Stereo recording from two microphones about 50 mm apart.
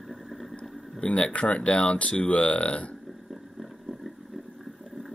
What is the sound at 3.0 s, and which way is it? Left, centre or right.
Vehicle, centre.